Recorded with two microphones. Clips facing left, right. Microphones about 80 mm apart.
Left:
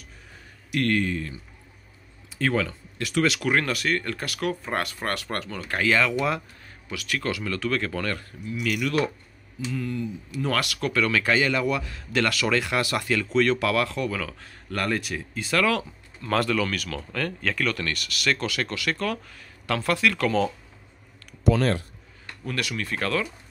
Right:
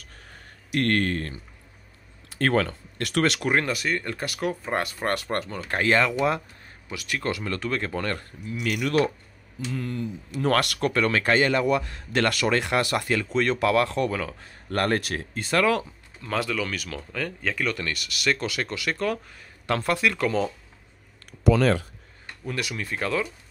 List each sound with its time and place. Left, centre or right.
0.7 s speech: right
0.9 s a man's voice: right
3.3 s speech: right
15.5 s speech: right
16.3 s speech: centre; by 20.4 s right
22.4 s speech: centre